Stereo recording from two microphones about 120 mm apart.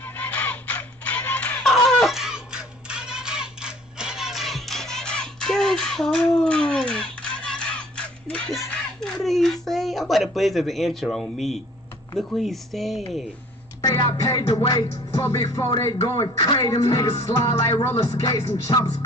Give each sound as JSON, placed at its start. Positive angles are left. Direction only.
{"t": 0.0, "sound": "music", "side_deg": 15}
{"t": 12.4, "sound": "speech", "side_deg": 0}
{"t": 13.7, "sound": "music", "side_deg": 30}